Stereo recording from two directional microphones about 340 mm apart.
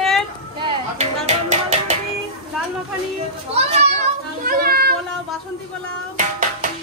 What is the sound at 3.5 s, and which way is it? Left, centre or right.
Children playing, centre.